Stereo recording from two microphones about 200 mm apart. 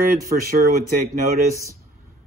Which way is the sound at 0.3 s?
50° right (ahead or behind).